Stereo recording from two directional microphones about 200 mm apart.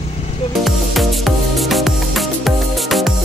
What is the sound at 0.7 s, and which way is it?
Music, centre (ahead or behind).